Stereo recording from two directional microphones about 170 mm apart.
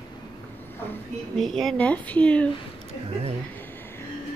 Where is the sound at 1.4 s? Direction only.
Centre (ahead or behind).